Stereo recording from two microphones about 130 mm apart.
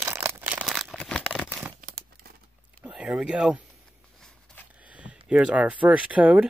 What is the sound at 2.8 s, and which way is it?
Speech, 10° right (ahead or behind).